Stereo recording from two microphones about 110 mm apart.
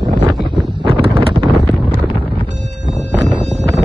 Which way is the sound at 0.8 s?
55° right (ahead or behind).